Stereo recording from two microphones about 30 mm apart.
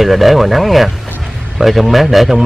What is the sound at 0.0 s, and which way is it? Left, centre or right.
Speech, centre.